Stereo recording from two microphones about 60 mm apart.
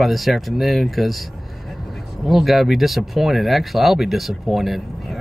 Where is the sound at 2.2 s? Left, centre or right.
Centre.